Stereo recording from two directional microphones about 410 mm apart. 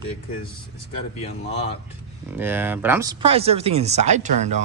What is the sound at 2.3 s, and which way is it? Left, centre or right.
Speech, centre.